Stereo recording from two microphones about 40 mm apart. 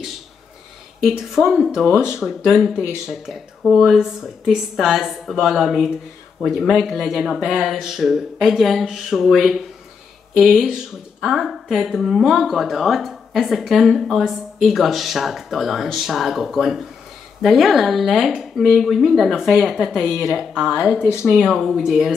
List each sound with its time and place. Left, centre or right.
1.0 s speech: centre
1.9 s speech: left
2.1 s a woman's voice: centre
21.1 s speech: left
21.5 s a woman's voice: centre